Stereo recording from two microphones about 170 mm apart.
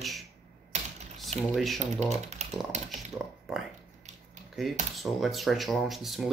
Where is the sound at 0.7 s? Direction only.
45° right (ahead or behind).